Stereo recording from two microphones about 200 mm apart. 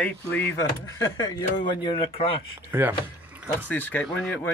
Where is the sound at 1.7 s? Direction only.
25° left (ahead or behind).